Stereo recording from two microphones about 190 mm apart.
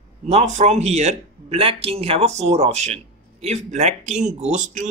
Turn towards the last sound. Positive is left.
turn(degrees=-40)  # may be behind; listen again after turning